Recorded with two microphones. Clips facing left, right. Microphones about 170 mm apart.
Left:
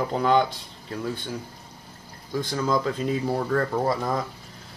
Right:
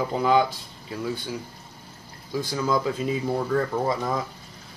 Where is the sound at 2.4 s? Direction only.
5° right (ahead or behind).